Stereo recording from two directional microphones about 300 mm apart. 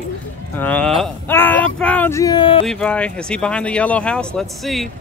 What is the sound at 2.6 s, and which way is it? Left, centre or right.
Speech, centre.